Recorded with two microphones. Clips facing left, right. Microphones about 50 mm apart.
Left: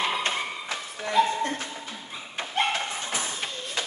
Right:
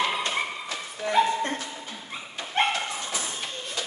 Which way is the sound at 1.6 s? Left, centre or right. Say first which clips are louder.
Left 1 dB; left.